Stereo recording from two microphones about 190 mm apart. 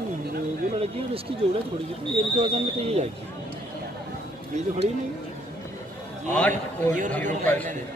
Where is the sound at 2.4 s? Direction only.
30° right (ahead or behind).